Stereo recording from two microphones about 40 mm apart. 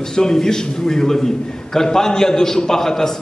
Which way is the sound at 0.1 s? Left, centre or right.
Centre.